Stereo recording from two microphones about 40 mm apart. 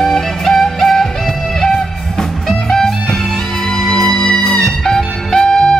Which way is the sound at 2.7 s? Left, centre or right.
Centre.